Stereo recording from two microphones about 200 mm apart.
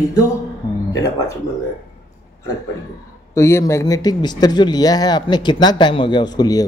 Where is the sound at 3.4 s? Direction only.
15° left (ahead or behind).